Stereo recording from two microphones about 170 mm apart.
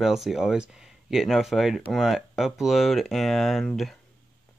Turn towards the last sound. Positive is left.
turn(degrees=0)  # may be behind; listen again after turning